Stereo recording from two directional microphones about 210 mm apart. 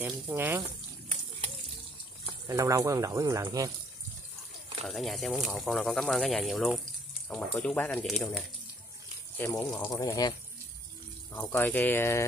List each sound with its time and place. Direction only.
0.0 s speech: 10° right (ahead or behind)
2.2 s speech: 15° right (ahead or behind)
4.8 s speech: centre (ahead or behind)
9.4 s speech: 15° left (ahead or behind)
11.3 s speech: 10° left (ahead or behind)